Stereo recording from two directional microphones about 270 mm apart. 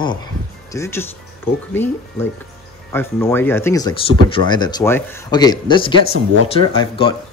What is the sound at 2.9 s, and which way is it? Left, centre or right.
Speech, centre.